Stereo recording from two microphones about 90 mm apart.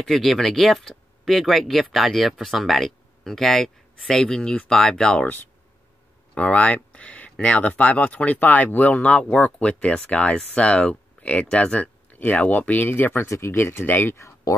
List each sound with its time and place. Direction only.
0.0 s speech: centre (ahead or behind)
6.3 s speech: 15° left (ahead or behind); by 14.5 s 30° left (ahead or behind)